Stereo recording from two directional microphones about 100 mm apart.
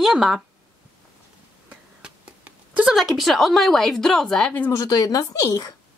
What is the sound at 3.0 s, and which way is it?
A woman's voice, centre (ahead or behind).